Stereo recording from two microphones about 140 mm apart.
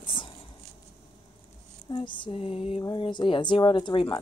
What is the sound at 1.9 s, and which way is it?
Speech, 35° left (ahead or behind).